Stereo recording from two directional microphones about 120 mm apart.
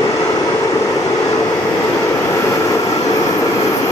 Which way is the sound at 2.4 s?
25° left (ahead or behind).